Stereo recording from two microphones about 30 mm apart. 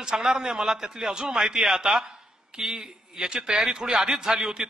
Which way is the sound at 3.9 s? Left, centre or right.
Centre.